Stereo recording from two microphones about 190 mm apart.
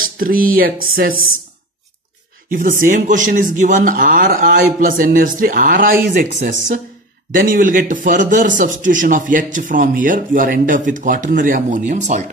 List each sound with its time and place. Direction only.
0.0 s speech: 50° right (ahead or behind)
2.5 s speech: 45° right (ahead or behind)